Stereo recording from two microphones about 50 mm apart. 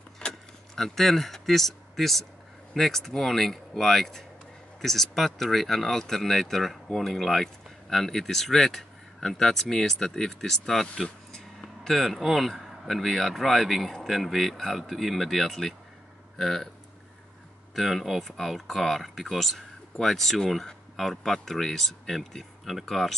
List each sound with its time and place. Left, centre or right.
0.2 s keys jangling: centre
0.7 s speech: centre
17.7 s speech: centre